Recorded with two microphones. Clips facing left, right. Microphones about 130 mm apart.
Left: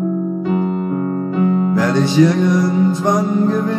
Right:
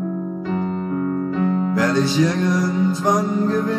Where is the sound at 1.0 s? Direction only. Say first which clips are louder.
Left 2 dB; 30° left (ahead or behind).